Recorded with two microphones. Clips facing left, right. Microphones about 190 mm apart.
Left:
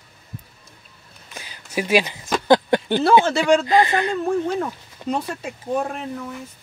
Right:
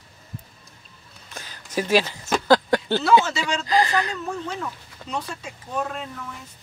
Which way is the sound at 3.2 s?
55° left (ahead or behind).